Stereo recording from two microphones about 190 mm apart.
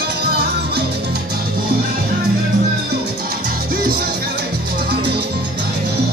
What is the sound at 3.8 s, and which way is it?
Music, 50° right (ahead or behind).